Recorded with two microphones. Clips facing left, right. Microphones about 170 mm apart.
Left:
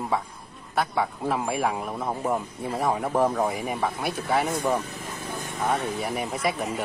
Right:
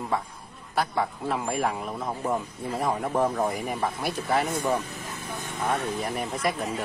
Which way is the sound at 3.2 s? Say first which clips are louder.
Left 2 dB; centre (ahead or behind).